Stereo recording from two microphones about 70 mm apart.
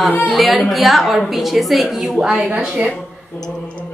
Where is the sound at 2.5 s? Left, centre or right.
Centre.